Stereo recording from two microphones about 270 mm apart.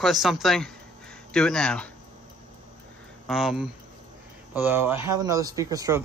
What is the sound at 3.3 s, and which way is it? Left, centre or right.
Speech, centre.